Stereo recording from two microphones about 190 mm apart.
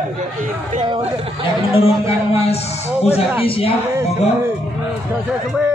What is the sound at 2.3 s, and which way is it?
A man's voice, 30° left (ahead or behind).